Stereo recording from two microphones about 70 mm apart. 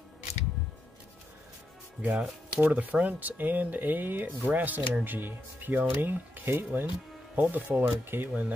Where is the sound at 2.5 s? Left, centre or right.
Right.